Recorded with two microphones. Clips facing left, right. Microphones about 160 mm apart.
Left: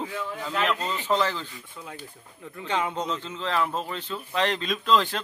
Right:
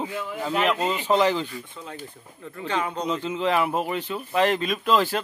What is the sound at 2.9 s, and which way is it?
Speech, 15° right (ahead or behind).